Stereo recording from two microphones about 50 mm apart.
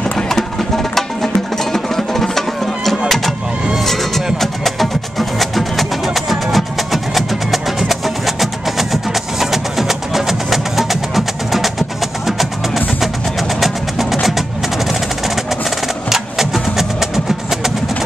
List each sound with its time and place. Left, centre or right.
0.9 s music: centre
16.1 s music: centre